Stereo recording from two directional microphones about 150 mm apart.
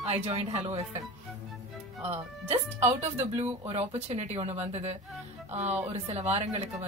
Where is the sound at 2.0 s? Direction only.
45° right (ahead or behind).